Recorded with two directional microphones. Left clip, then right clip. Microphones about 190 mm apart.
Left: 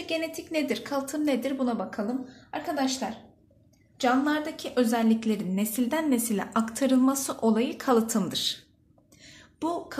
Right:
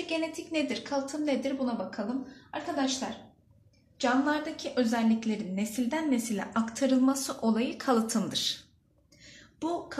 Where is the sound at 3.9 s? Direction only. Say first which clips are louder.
Left 3 dB; 50° left (ahead or behind); by 8.5 s 30° left (ahead or behind).